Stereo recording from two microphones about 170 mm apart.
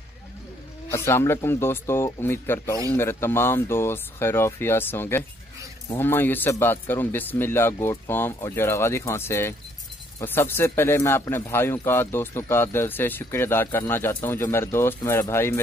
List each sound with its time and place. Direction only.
0.9 s speech: 15° left (ahead or behind)